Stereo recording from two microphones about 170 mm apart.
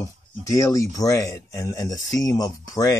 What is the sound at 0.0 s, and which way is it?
Speech, 20° left (ahead or behind).